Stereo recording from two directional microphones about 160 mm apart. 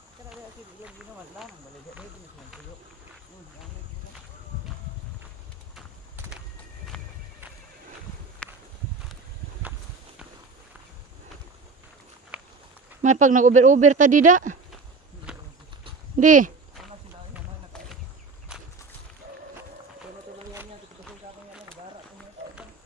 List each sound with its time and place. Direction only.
0.8 s speech: centre (ahead or behind)
8.4 s clip-clop: 10° left (ahead or behind)
9.1 s a sound: 5° right (ahead or behind)
12.3 s a sound: 5° right (ahead or behind)
13.0 s speech: 50° right (ahead or behind)
15.3 s horse: 5° right (ahead or behind)
16.2 s speech: 55° right (ahead or behind)